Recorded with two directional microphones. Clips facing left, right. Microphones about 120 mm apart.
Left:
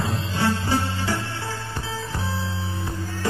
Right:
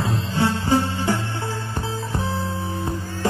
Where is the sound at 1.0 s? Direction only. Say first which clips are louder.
Right 4 dB; 20° right (ahead or behind).